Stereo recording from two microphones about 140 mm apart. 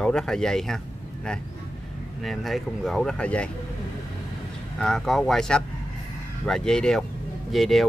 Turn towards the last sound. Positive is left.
turn(degrees=0)  # may be behind; listen again after turning